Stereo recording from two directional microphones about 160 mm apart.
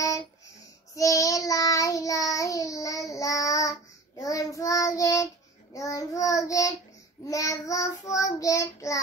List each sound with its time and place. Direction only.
0.9 s child singing: 20° left (ahead or behind)